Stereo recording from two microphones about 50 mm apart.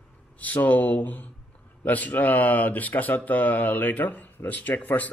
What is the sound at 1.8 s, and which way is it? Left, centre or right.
Speech, left.